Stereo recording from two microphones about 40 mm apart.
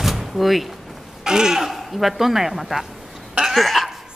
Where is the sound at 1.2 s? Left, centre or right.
Centre.